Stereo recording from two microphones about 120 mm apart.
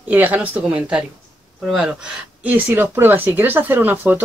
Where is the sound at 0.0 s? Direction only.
15° right (ahead or behind).